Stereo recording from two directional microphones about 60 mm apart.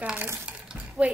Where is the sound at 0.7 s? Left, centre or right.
Centre.